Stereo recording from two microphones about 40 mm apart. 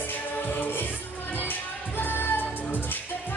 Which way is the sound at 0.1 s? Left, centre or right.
Left.